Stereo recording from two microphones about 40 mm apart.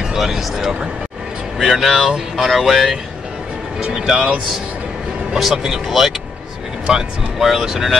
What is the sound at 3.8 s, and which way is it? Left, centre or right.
Speech, centre.